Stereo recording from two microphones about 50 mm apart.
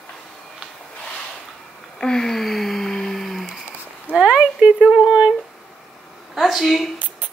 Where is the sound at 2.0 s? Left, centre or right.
Centre.